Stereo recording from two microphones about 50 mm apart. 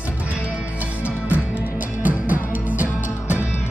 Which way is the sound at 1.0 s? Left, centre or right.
Right.